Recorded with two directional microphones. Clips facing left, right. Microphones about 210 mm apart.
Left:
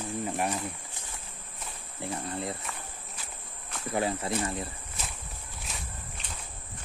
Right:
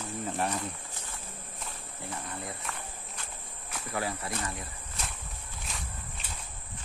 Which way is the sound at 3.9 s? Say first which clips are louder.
Left 5 dB; 25° left (ahead or behind).